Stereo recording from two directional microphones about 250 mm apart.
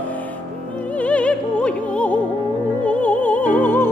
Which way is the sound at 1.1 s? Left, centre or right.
Centre.